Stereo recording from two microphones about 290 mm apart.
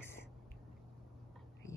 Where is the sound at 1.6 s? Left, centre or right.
Centre.